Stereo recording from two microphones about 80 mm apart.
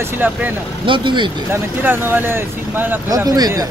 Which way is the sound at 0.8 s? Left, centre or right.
Right.